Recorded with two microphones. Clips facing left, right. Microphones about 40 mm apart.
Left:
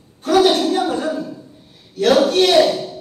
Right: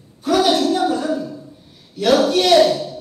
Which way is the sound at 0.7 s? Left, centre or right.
Left.